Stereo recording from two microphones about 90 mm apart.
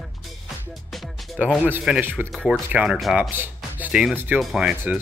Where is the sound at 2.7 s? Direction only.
10° right (ahead or behind).